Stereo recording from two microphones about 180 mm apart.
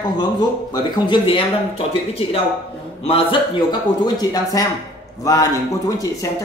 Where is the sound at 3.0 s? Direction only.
30° left (ahead or behind).